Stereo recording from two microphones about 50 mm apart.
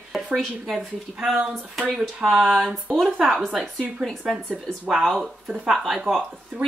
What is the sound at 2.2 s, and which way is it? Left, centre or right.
Speech, centre.